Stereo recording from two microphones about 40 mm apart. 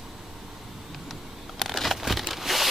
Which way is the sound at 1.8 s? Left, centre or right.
Centre.